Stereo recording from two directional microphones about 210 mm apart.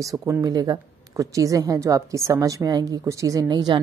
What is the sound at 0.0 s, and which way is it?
Speech, 15° right (ahead or behind).